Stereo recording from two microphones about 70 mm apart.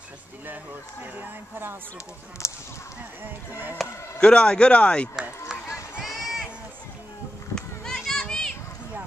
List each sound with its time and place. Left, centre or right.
1.1 s speech: right
2.4 s speech: left
3.8 s speech: centre
4.2 s speech: centre
6.2 s a sound: centre
7.5 s children playing: centre